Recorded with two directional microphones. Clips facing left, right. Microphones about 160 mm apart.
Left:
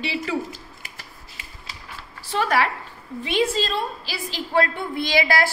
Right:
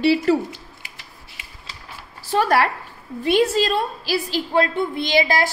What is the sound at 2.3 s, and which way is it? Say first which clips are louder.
A woman's voice: right 4 dB; 40° right (ahead or behind).